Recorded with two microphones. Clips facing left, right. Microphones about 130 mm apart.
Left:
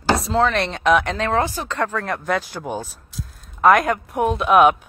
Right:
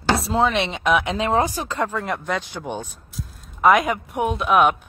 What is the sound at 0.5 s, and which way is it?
Speech, 5° right (ahead or behind).